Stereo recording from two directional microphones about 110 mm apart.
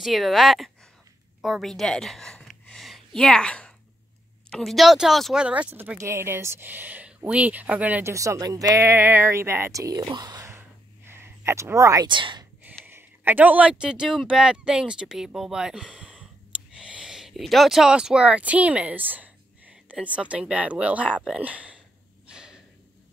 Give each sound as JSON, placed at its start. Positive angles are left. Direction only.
{"t": 0.0, "sound": "a woman's voice", "side_deg": 0}
{"t": 5.9, "sound": "speech", "side_deg": -25}
{"t": 8.1, "sound": "speech", "side_deg": -30}
{"t": 10.4, "sound": "a sound", "side_deg": -20}
{"t": 12.1, "sound": "speech", "side_deg": -45}
{"t": 12.8, "sound": "speech", "side_deg": -20}
{"t": 22.3, "sound": "snort", "side_deg": -5}